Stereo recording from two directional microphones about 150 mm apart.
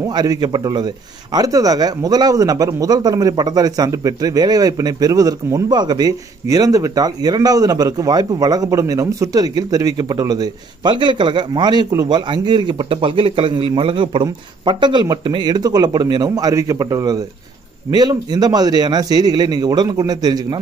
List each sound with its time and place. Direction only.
0.0 s a man's voice: 25° right (ahead or behind)